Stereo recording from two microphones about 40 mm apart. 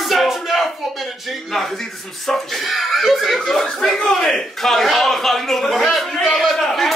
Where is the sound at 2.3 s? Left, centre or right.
Centre.